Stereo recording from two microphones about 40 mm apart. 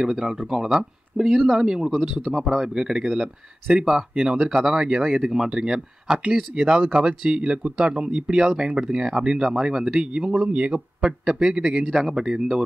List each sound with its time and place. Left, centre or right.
0.0 s a man's voice: centre